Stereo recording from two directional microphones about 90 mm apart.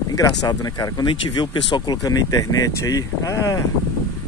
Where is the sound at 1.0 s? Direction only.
60° left (ahead or behind); by 3.6 s 40° left (ahead or behind).